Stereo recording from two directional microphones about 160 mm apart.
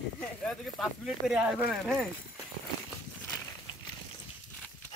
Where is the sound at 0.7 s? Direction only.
5° right (ahead or behind).